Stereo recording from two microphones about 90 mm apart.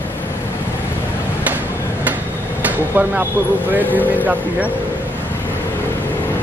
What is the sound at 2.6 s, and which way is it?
Speech, 20° right (ahead or behind).